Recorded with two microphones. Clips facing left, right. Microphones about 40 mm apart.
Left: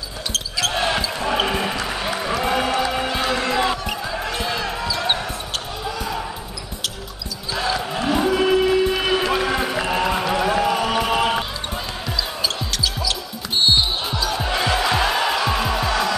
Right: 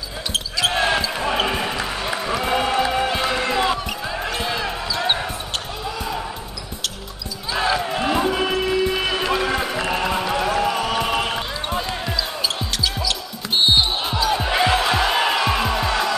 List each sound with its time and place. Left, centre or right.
0.3 s basketball bounce: centre
1.9 s a sound: centre
7.5 s basketball bounce: right
8.2 s run: centre
10.6 s a sound: centre
11.7 s basketball bounce: centre